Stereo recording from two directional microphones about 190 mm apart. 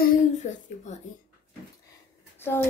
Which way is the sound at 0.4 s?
40° left (ahead or behind).